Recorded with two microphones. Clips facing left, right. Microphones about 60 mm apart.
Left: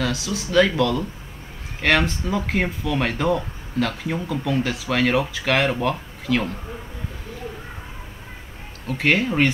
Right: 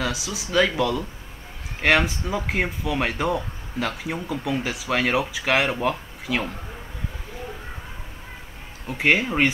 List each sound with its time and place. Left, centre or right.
0.0 s speech: centre
8.8 s speech: centre